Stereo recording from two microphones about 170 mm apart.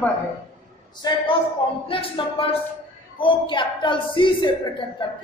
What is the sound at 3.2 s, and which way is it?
Speech, 30° left (ahead or behind).